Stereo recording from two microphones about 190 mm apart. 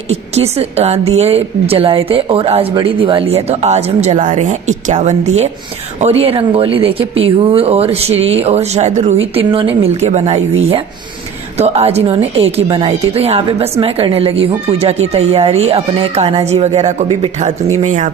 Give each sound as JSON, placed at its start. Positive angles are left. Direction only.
{"t": 0.1, "sound": "speech", "side_deg": -35}
{"t": 11.5, "sound": "speech", "side_deg": -35}